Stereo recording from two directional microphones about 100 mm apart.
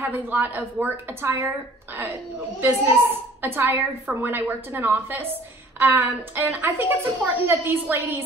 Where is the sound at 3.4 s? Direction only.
20° right (ahead or behind).